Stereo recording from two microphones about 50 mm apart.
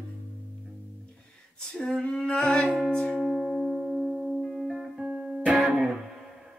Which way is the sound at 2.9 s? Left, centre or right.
Centre.